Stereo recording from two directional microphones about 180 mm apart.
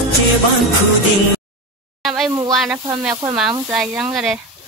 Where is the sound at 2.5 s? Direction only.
Centre (ahead or behind).